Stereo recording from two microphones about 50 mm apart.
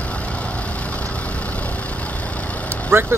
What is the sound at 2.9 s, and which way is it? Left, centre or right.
Speech, right.